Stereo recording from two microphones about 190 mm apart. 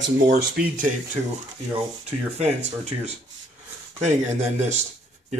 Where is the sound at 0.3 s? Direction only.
50° right (ahead or behind).